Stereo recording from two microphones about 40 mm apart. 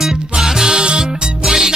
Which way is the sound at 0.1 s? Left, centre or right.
Centre.